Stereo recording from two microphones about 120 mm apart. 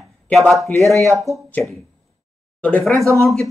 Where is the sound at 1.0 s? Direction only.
25° right (ahead or behind).